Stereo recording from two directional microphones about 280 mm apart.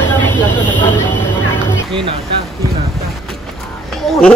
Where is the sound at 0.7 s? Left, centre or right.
Centre.